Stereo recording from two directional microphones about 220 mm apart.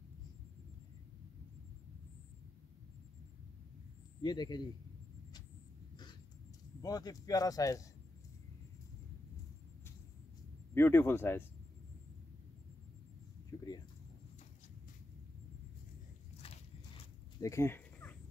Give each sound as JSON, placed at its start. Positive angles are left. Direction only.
{"t": 4.2, "sound": "a man's voice", "side_deg": 20}
{"t": 6.8, "sound": "speech", "side_deg": 15}
{"t": 10.7, "sound": "speech", "side_deg": 10}
{"t": 13.5, "sound": "a sound", "side_deg": 15}
{"t": 16.4, "sound": "walk", "side_deg": 25}
{"t": 17.4, "sound": "a sound", "side_deg": 10}